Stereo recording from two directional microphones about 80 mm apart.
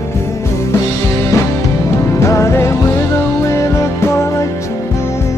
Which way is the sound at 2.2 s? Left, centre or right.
Left.